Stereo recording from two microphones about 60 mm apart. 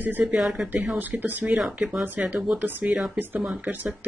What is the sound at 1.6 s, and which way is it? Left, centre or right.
Speech, centre.